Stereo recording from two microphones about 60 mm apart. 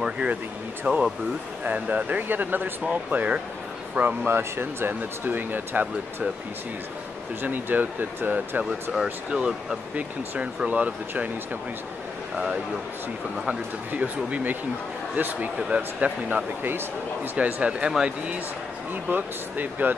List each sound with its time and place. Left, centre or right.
0.0 s speech: right
4.3 s speech: right
7.4 s speech: right
9.3 s speech: centre
13.5 s speech: right
17.4 s speech: right
19.0 s speech: right